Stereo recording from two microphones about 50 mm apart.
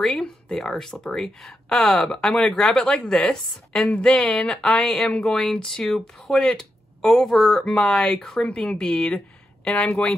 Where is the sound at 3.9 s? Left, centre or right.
Left.